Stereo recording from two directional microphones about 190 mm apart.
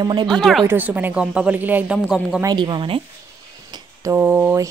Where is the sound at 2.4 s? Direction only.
25° right (ahead or behind).